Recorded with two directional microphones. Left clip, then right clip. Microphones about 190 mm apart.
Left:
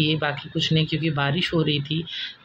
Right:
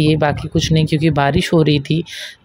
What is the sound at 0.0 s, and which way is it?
Speech, 40° right (ahead or behind).